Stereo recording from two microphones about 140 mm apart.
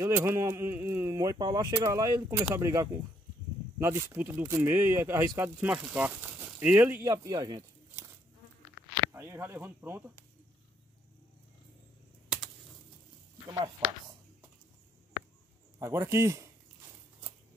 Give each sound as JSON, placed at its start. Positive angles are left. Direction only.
{"t": 0.0, "sound": "speech", "side_deg": -15}
{"t": 7.1, "sound": "speech", "side_deg": -30}
{"t": 9.1, "sound": "speech", "side_deg": -15}
{"t": 13.5, "sound": "speech", "side_deg": -35}
{"t": 15.8, "sound": "speech", "side_deg": -20}